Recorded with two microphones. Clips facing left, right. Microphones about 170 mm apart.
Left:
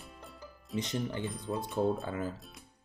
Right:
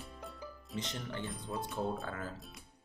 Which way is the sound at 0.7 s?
15° left (ahead or behind).